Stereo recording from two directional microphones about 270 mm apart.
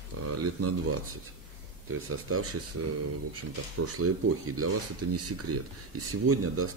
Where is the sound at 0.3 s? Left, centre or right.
Right.